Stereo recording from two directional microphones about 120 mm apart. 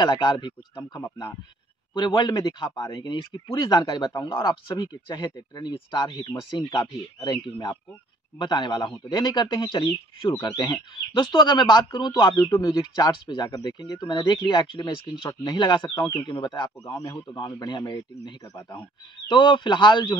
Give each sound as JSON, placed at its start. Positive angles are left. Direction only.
{"t": 0.0, "sound": "speech", "side_deg": 40}